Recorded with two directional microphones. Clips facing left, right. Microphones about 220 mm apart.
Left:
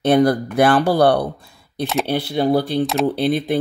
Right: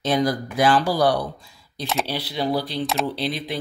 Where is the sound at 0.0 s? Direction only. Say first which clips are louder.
Left 7 dB; 60° left (ahead or behind).